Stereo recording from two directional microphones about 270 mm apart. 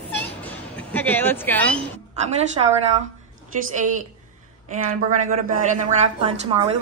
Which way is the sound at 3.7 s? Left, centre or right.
Right.